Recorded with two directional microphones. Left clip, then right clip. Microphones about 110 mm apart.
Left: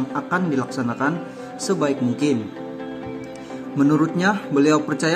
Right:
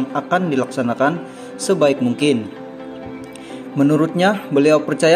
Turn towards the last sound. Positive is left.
turn(degrees=-15)  # may be behind; listen again after turning